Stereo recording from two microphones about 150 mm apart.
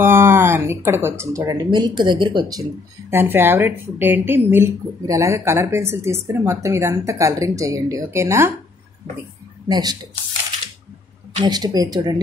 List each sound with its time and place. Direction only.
0.0 s speech: 15° right (ahead or behind); by 2.6 s 30° right (ahead or behind)
3.1 s speech: 15° right (ahead or behind)
9.7 s speech: 25° right (ahead or behind)
11.4 s speech: 25° right (ahead or behind)